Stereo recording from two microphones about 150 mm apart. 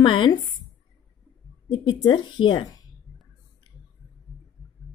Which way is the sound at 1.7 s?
30° left (ahead or behind).